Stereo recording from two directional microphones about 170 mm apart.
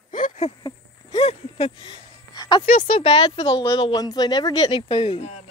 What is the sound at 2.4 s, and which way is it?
Music, 25° left (ahead or behind).